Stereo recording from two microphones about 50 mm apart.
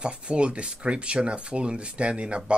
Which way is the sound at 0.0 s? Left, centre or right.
Right.